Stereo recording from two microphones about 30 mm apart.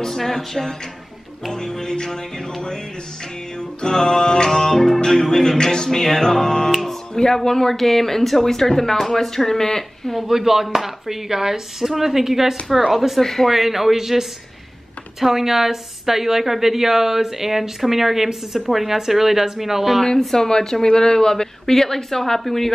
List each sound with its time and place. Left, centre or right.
0.2 s speech: centre
1.5 s speech: centre
6.7 s music: centre
7.3 s speech: centre
10.1 s a woman's voice: centre
13.2 s speech: centre
13.5 s a woman's voice: centre
20.3 s speech: left